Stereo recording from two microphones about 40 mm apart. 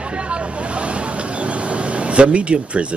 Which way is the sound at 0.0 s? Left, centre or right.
Right.